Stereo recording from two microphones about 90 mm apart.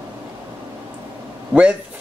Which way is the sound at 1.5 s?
15° right (ahead or behind).